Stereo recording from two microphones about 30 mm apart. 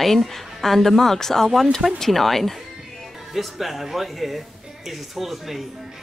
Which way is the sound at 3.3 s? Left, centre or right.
Centre.